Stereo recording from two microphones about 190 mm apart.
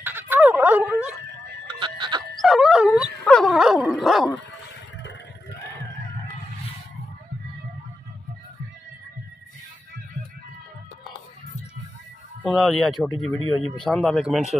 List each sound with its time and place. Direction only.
0.0 s dog: 10° right (ahead or behind)
1.7 s chicken: 25° right (ahead or behind)
2.4 s dog: centre (ahead or behind)
12.4 s speech: 5° left (ahead or behind)
13.4 s speech: 90° left
13.8 s speech: centre (ahead or behind)